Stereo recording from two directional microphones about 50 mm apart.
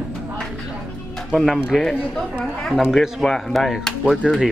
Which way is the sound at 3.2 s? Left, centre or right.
Centre.